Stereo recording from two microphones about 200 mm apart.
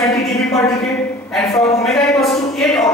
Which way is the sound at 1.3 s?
Centre (ahead or behind).